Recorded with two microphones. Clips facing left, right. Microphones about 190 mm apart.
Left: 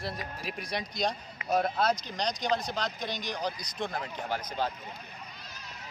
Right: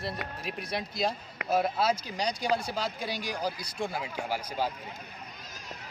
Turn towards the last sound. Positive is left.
turn(degrees=-10)  # may be behind; listen again after turning